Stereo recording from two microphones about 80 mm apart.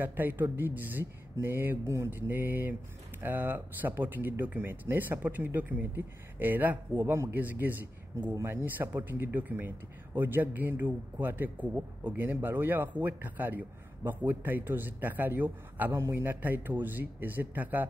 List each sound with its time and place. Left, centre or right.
0.0 s speech: right
8.4 s speech: right
8.6 s speech: right